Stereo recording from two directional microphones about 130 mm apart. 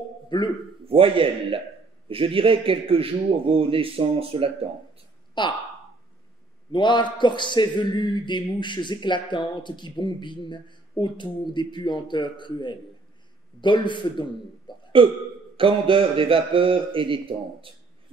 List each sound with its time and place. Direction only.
0.3 s a man's voice: 35° left (ahead or behind)
0.8 s a man's voice: 45° right (ahead or behind)
5.3 s speech: 35° left (ahead or behind)
6.7 s a man's voice: 35° left (ahead or behind)
14.7 s hiccup: 35° left (ahead or behind)
15.5 s a man's voice: 40° right (ahead or behind)